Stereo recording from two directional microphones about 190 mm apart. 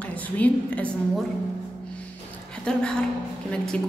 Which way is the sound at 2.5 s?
5° left (ahead or behind).